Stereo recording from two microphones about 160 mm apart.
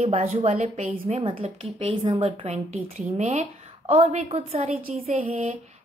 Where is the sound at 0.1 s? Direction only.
40° right (ahead or behind).